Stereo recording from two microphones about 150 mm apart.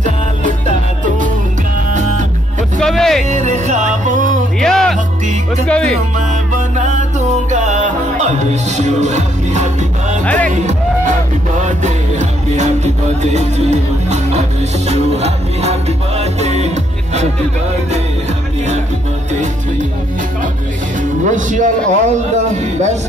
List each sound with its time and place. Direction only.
0.0 s music: 55° right (ahead or behind)
2.8 s music: 5° left (ahead or behind)
3.3 s music: 50° right (ahead or behind)
4.6 s music: 5° left (ahead or behind)
6.1 s music: 55° right (ahead or behind)
10.2 s music: 10° left (ahead or behind)
10.5 s music: 55° right (ahead or behind)
21.0 s music: 55° right (ahead or behind)